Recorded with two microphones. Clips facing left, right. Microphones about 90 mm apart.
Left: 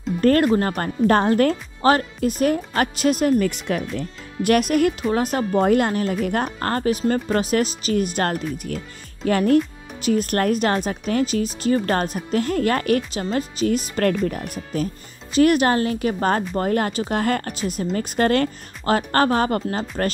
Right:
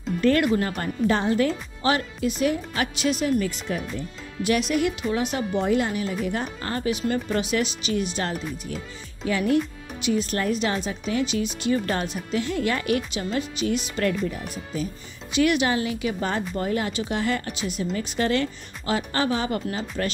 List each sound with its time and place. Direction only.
0.2 s speech: 45° left (ahead or behind)
15.3 s speech: 45° left (ahead or behind)